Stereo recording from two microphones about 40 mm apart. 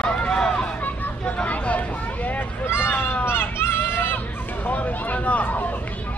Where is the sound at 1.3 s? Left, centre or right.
Left.